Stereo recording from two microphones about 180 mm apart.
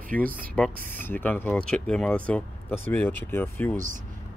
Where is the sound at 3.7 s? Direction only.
45° right (ahead or behind).